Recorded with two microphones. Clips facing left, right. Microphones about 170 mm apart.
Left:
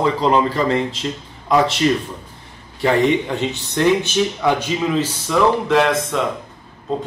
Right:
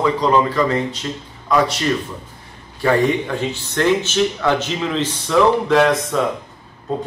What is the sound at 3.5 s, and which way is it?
Speech, 15° left (ahead or behind).